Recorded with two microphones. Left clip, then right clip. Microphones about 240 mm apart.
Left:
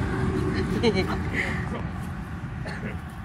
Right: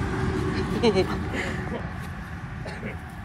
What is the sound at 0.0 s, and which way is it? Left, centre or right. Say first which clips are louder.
Vehicle: even; centre.